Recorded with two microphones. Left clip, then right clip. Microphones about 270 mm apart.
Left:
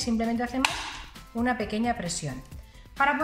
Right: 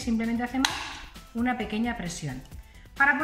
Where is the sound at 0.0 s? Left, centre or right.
Centre.